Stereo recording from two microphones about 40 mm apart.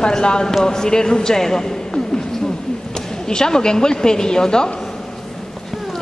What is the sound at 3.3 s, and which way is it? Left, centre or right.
A woman's voice, centre.